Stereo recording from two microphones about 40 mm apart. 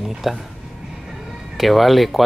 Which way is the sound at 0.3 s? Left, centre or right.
Centre.